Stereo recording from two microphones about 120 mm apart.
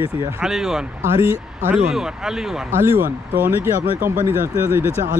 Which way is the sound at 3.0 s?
15° right (ahead or behind).